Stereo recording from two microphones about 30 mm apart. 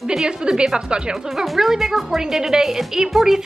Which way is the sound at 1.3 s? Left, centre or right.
Centre.